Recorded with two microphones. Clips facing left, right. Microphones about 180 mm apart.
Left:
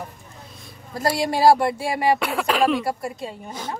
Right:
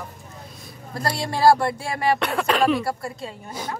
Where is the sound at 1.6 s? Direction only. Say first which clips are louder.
Left 3 dB; 15° left (ahead or behind).